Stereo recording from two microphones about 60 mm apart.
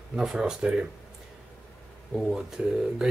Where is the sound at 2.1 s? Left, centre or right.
Centre.